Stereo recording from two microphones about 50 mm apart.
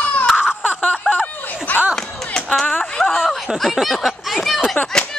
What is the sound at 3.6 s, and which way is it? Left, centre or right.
Speech, centre.